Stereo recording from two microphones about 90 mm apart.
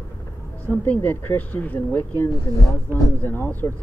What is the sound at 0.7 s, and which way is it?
Speech, 20° left (ahead or behind).